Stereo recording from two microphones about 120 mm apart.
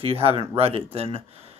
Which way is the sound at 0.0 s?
55° right (ahead or behind).